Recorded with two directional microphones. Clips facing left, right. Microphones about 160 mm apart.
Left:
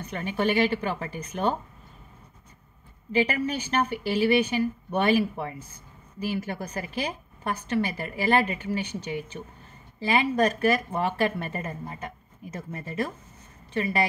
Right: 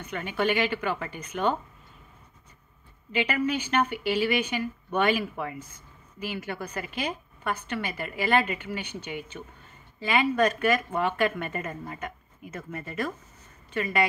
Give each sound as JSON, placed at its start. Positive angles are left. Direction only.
{"t": 0.0, "sound": "a woman's voice", "side_deg": 40}
{"t": 3.1, "sound": "a woman's voice", "side_deg": 40}